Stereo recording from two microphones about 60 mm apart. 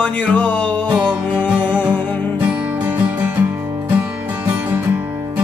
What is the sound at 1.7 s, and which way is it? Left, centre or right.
Music, right.